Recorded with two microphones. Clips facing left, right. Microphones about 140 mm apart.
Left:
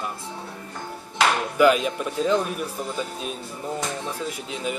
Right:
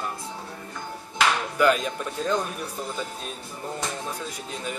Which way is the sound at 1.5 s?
10° left (ahead or behind).